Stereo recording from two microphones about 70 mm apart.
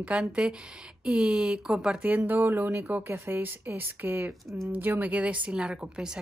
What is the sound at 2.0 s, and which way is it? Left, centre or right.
Speech, right.